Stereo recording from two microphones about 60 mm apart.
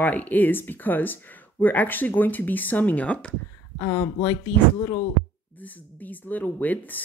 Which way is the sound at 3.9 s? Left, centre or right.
Left.